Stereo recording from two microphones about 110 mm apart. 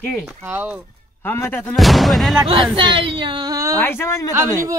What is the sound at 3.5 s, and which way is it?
Speech, 30° right (ahead or behind).